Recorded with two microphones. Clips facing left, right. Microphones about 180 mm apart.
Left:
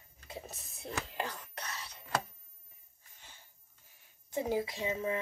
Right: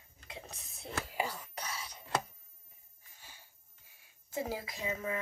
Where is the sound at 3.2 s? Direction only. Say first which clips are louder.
Right 1 dB; 10° right (ahead or behind).